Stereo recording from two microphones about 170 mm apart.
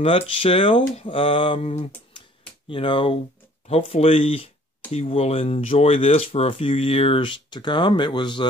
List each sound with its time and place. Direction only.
0.0 s speech: 30° left (ahead or behind)